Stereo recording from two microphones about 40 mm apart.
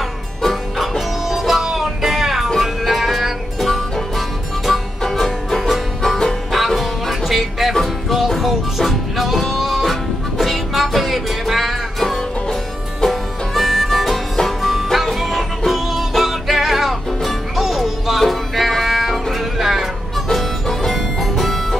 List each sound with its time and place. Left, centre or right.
0.4 s music: centre
6.5 s music: centre